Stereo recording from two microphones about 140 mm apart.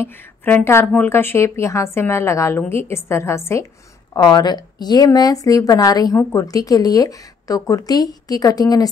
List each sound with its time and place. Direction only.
0.0 s a woman's voice: 15° left (ahead or behind)
4.1 s speech: 30° left (ahead or behind)